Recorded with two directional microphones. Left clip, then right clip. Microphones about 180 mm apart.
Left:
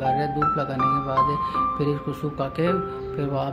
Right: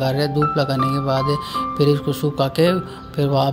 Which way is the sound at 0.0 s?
30° right (ahead or behind).